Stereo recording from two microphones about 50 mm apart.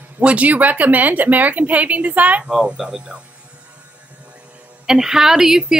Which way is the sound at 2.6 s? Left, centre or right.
Centre.